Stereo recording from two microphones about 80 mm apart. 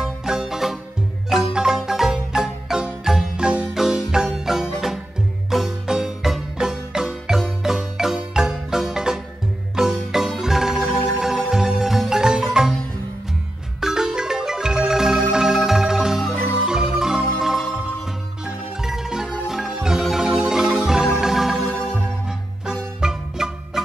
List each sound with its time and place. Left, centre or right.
0.0 s music: centre
1.3 s marimba: centre
5.5 s music: centre
13.7 s marimba: centre
18.4 s music: centre
22.7 s music: centre